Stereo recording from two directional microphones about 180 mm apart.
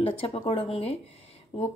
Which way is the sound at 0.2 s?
35° left (ahead or behind).